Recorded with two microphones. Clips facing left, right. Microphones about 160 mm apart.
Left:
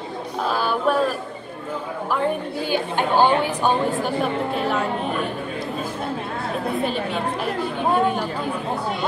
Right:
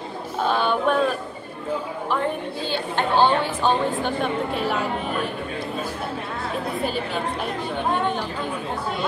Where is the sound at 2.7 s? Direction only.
10° left (ahead or behind).